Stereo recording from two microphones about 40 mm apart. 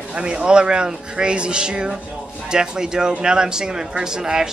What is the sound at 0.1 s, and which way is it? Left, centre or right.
A man's voice, right.